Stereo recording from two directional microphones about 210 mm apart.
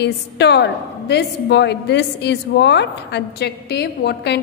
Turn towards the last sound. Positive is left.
turn(degrees=50)  # may be behind; listen again after turning